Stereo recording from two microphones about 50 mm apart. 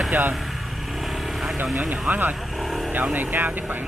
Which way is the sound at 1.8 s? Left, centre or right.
Centre.